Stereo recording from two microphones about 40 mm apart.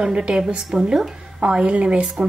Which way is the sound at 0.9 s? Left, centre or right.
Centre.